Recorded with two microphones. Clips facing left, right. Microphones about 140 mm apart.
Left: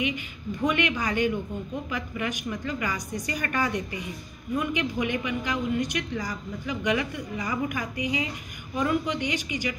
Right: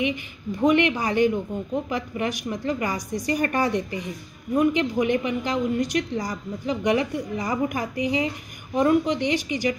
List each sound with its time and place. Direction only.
0.6 s a woman's voice: 30° right (ahead or behind)